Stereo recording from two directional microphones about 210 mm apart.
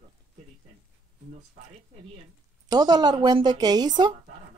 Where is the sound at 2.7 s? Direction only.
20° right (ahead or behind).